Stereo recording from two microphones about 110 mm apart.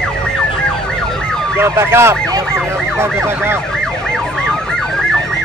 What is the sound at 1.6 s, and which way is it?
Emergency vehicle, 20° right (ahead or behind).